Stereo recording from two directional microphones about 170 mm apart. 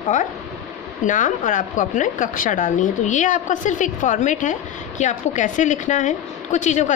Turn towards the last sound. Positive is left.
turn(degrees=45)  # may be behind; listen again after turning